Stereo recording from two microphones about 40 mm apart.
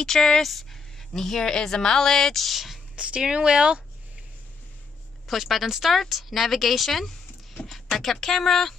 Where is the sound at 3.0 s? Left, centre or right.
Right.